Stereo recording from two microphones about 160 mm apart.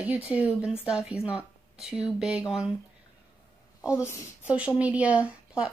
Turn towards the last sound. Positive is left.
turn(degrees=-10)  # may be behind; listen again after turning